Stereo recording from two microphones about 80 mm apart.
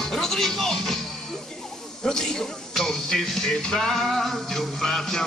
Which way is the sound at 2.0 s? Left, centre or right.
Centre.